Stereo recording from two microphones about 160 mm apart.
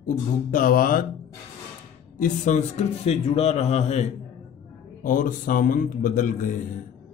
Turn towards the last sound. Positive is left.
turn(degrees=55)  # may be behind; listen again after turning